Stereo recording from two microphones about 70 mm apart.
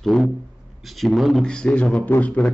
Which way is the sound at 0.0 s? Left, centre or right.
Centre.